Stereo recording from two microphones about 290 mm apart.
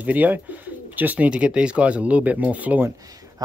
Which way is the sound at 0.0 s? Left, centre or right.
Centre.